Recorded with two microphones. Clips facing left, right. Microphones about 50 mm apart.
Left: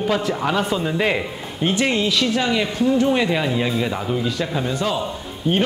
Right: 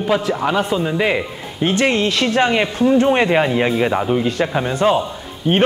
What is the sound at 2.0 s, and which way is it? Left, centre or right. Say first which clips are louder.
Speech: right 4 dB; right.